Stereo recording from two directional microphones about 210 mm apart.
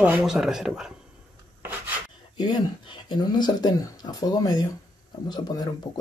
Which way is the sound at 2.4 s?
20° left (ahead or behind).